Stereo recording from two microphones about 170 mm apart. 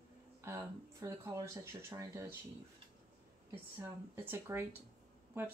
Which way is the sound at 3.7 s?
15° right (ahead or behind).